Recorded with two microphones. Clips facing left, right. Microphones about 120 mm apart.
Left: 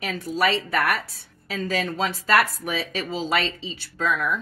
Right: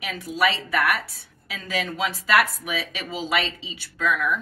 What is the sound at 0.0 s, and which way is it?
Speech, 35° left (ahead or behind).